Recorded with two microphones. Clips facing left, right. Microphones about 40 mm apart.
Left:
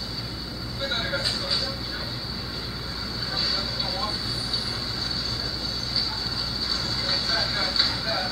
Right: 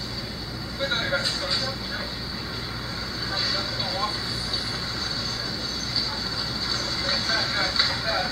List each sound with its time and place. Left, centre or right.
0.8 s speech: centre
3.3 s vehicle: centre
6.7 s music: centre